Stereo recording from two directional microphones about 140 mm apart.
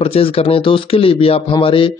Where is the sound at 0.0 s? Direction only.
45° left (ahead or behind).